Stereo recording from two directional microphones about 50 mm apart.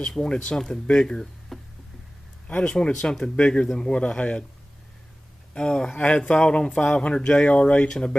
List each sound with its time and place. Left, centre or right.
0.0 s speech: centre
1.5 s a sound: centre
2.6 s speech: centre
5.5 s speech: centre